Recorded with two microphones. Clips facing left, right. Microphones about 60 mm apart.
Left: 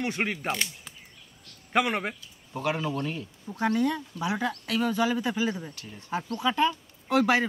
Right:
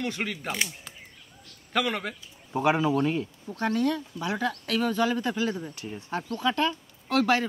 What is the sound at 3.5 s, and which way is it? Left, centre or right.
A woman's voice, centre.